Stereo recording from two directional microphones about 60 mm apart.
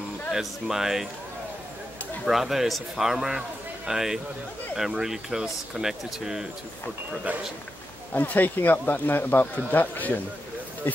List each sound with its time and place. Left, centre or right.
0.3 s a man's voice: centre
2.2 s a man's voice: centre
7.3 s a man's voice: right
8.1 s speech: left